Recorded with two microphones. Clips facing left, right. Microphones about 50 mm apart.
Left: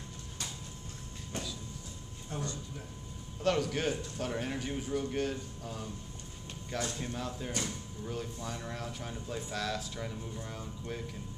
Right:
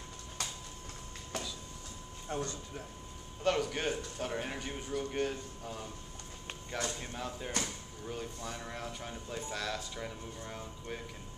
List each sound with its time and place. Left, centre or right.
2.2 s speech: right
3.4 s speech: centre